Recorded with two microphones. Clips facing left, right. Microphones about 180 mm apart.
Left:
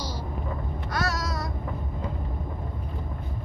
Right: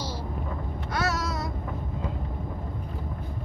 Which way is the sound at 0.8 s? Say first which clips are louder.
Right 1 dB; 25° right (ahead or behind).